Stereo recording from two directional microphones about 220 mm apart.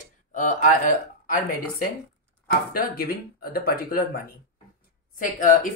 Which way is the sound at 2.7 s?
40° left (ahead or behind).